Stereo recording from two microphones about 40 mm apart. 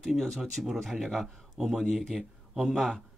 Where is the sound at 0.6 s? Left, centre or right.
Right.